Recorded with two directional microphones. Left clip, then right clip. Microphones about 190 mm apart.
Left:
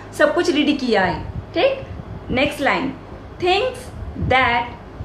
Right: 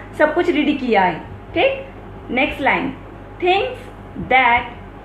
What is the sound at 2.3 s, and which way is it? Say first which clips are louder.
A woman's voice: right 1 dB; 10° left (ahead or behind).